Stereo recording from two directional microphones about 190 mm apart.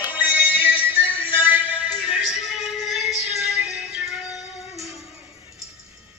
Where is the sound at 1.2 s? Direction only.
10° right (ahead or behind).